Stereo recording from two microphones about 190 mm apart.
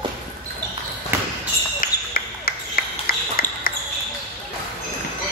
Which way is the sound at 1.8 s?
50° left (ahead or behind).